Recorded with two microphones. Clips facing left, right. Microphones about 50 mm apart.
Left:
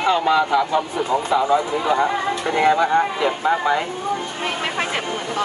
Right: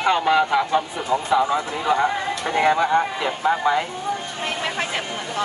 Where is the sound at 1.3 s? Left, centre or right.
Centre.